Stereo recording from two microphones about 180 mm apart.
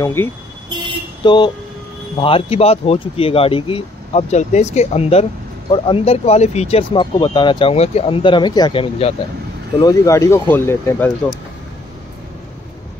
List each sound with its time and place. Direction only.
0.0 s speech: 15° left (ahead or behind)
1.2 s speech: 25° left (ahead or behind)
9.8 s speech: 20° left (ahead or behind)